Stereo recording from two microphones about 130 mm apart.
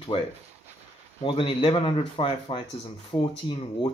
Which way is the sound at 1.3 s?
40° left (ahead or behind).